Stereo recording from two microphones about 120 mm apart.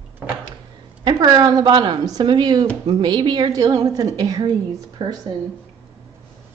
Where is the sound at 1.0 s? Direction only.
35° right (ahead or behind).